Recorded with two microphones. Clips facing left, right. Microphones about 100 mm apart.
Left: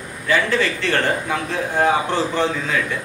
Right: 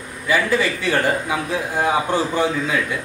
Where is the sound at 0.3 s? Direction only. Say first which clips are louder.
Even; 10° right (ahead or behind).